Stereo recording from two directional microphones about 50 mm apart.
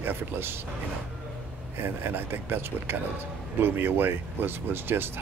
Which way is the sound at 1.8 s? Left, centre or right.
Right.